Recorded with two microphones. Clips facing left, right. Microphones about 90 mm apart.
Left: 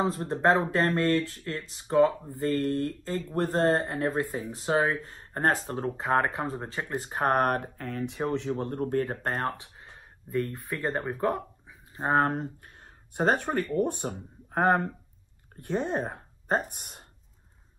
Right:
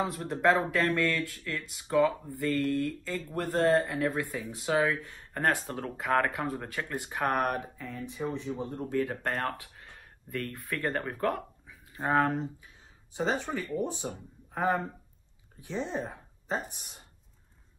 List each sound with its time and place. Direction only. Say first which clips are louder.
0.0 s speech: left 2 dB; 30° left (ahead or behind)
7.0 s speech: left 4 dB; 35° left (ahead or behind)
9.6 s speech: left 1 dB; 20° left (ahead or behind)
12.0 s speech: left 2 dB; 35° left (ahead or behind); by 17.0 s 55° left (ahead or behind)